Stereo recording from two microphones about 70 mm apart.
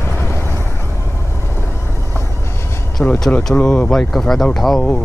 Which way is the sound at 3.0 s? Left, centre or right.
Centre.